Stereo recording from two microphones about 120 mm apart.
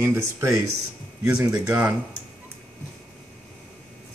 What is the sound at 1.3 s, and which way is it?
Speech, 10° right (ahead or behind).